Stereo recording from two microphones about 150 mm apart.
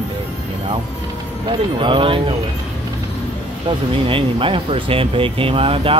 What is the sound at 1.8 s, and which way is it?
Speech, 35° right (ahead or behind).